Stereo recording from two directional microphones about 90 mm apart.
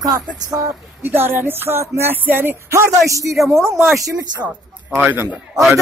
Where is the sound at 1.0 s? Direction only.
25° right (ahead or behind).